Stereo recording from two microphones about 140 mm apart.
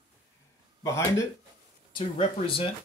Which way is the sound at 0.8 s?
20° left (ahead or behind).